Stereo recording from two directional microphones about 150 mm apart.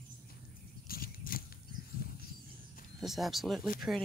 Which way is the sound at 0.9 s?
75° left (ahead or behind).